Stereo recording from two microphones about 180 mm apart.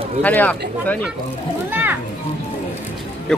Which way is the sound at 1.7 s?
10° right (ahead or behind).